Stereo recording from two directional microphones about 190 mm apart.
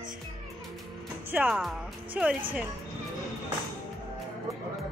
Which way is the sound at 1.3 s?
5° right (ahead or behind).